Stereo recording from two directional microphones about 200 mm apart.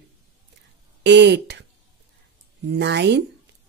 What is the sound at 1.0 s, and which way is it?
Speech, 60° right (ahead or behind).